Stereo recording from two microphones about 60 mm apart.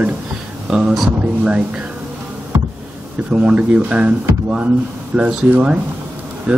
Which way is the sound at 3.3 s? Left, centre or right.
Centre.